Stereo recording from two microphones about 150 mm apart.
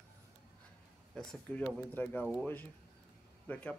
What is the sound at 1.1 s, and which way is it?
Speech, 5° left (ahead or behind).